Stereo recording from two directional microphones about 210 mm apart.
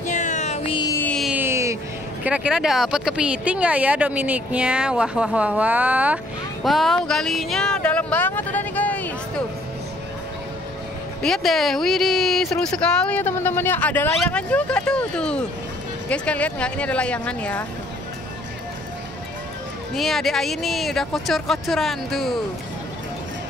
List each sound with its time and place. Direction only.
0.0 s music: 35° left (ahead or behind)
0.9 s music: 5° left (ahead or behind); by 1.8 s 15° right (ahead or behind)
2.2 s speech: 5° right (ahead or behind)
11.2 s speech: centre (ahead or behind)
20.0 s speech: centre (ahead or behind)